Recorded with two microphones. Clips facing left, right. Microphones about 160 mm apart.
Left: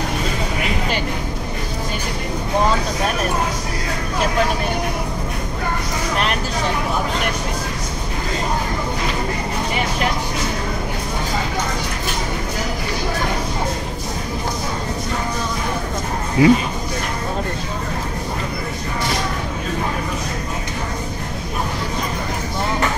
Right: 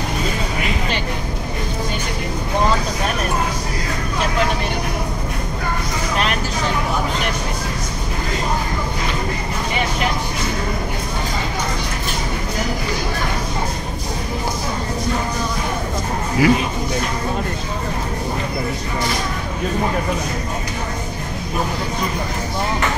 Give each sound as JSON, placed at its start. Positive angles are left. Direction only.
{"t": 16.4, "sound": "speech", "side_deg": 25}